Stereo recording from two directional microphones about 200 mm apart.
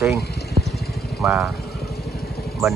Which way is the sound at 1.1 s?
Centre (ahead or behind).